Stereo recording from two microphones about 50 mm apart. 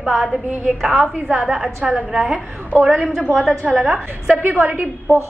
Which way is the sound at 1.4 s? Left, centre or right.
Centre.